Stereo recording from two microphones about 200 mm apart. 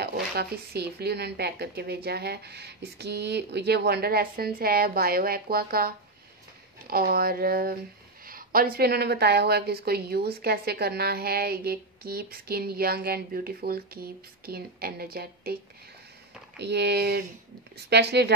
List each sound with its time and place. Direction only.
0.0 s a woman's voice: 55° right (ahead or behind)
6.9 s a woman's voice: 50° right (ahead or behind)
16.5 s speech: 60° right (ahead or behind)